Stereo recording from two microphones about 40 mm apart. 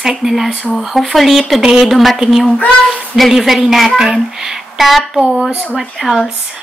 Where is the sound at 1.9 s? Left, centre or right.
Centre.